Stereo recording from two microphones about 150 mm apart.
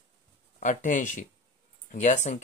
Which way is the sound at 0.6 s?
60° left (ahead or behind).